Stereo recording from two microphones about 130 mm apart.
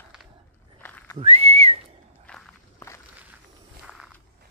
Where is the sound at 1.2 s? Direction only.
50° right (ahead or behind).